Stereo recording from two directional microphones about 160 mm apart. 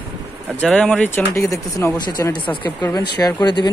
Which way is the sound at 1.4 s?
20° left (ahead or behind).